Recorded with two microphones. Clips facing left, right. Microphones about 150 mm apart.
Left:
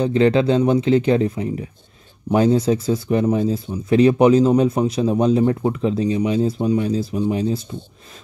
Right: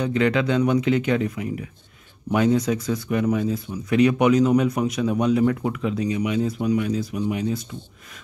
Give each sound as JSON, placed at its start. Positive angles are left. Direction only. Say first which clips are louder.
{"t": 0.0, "sound": "speech", "louder": "left 5 dB", "side_deg": 30}